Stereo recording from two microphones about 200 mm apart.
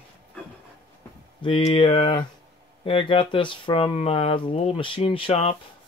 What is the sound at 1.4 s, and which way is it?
Speech, 25° left (ahead or behind).